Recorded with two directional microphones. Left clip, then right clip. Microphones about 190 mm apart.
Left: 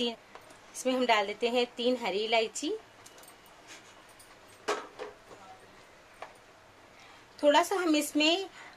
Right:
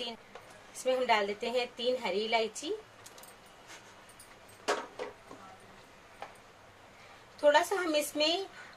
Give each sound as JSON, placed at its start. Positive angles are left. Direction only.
{"t": 0.8, "sound": "a woman's voice", "side_deg": 50}
{"t": 7.3, "sound": "a woman's voice", "side_deg": 50}